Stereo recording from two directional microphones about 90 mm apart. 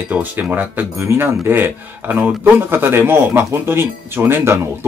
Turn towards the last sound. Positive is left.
turn(degrees=-25)  # may be behind; listen again after turning